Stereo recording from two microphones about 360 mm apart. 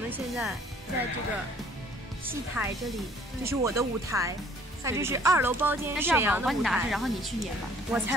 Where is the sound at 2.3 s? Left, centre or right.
Centre.